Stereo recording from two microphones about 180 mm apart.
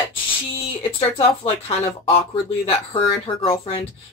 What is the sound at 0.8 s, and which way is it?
Speech, 30° left (ahead or behind).